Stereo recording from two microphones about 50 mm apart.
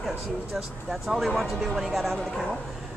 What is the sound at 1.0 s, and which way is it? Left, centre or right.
Speech, centre.